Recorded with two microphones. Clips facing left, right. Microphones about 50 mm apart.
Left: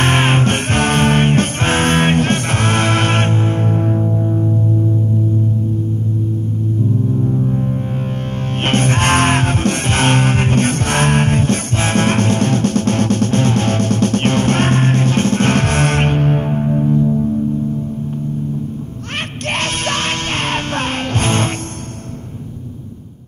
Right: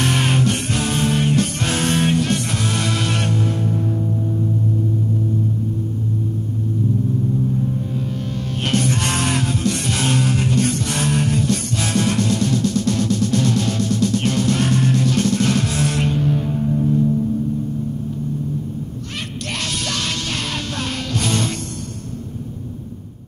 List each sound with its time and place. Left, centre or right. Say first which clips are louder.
0.0 s music: left 4 dB; left
7.2 s music: left 3 dB; left
19.6 s music: left 5 dB; left